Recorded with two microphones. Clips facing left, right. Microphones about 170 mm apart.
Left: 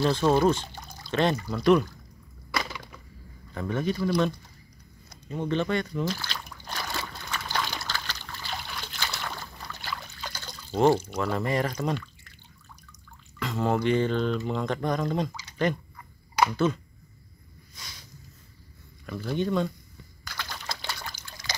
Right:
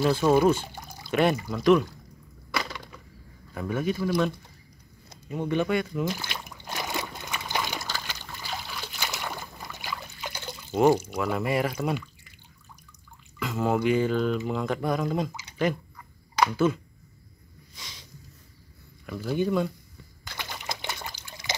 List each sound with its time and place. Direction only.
0.0 s speech: 10° right (ahead or behind)
2.5 s a sound: 5° left (ahead or behind)
3.5 s speech: 10° right (ahead or behind)
5.3 s speech: 10° right (ahead or behind)
6.7 s trickle: 15° right (ahead or behind)
13.4 s speech: 5° right (ahead or behind)
19.0 s speech: 10° right (ahead or behind)
20.2 s water: 20° right (ahead or behind)
21.2 s trickle: 15° right (ahead or behind)